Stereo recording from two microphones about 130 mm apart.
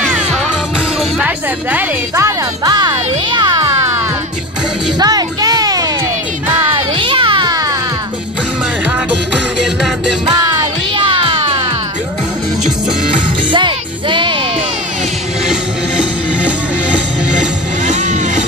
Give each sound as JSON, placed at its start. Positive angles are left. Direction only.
{"t": 0.1, "sound": "music", "side_deg": -10}
{"t": 2.2, "sound": "music", "side_deg": -30}
{"t": 4.9, "sound": "music", "side_deg": -30}
{"t": 10.2, "sound": "music", "side_deg": -30}
{"t": 11.1, "sound": "music", "side_deg": -40}
{"t": 13.5, "sound": "music", "side_deg": -40}
{"t": 17.8, "sound": "music", "side_deg": -65}